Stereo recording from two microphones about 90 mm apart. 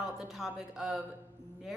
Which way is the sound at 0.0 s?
5° right (ahead or behind).